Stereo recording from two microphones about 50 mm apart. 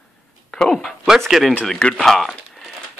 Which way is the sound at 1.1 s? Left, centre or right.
Centre.